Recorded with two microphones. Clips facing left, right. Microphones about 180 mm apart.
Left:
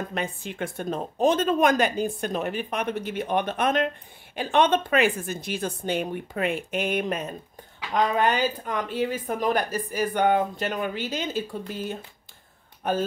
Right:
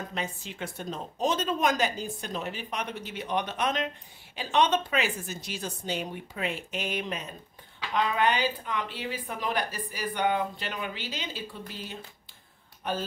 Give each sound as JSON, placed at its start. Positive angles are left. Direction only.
{"t": 0.1, "sound": "speech", "side_deg": 55}